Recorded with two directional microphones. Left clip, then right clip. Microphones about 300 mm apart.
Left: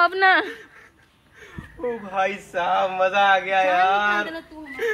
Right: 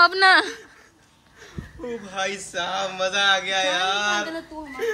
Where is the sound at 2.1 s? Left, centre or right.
Centre.